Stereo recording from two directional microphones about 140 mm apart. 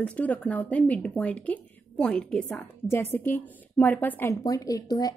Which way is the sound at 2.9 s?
15° left (ahead or behind).